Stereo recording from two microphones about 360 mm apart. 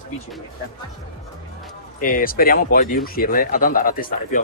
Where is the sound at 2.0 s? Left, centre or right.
Left.